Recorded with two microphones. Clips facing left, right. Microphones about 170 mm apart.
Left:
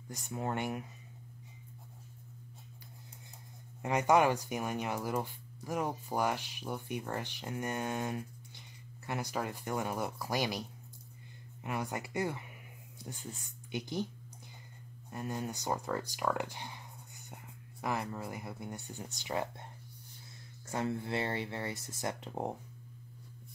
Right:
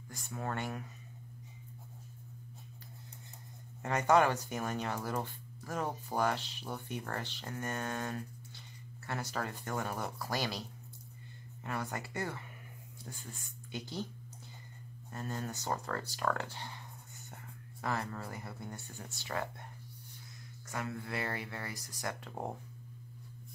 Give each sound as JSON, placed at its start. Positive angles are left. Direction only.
{"t": 0.1, "sound": "speech", "side_deg": 20}
{"t": 3.8, "sound": "speech", "side_deg": 15}
{"t": 11.6, "sound": "speech", "side_deg": 15}
{"t": 15.0, "sound": "speech", "side_deg": 15}